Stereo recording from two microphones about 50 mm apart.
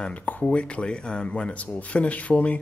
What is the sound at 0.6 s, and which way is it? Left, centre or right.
Speech, left.